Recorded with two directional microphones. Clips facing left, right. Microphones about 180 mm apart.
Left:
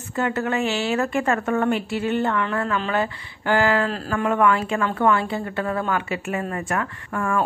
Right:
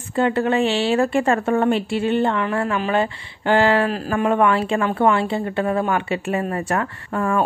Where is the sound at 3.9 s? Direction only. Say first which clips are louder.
Right 3 dB; 15° right (ahead or behind); by 7.2 s 35° right (ahead or behind).